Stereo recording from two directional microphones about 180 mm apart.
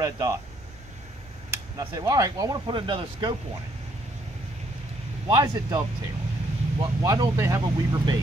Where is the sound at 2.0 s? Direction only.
20° right (ahead or behind).